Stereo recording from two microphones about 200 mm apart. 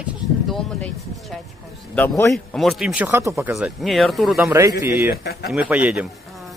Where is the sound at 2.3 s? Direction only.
Centre (ahead or behind).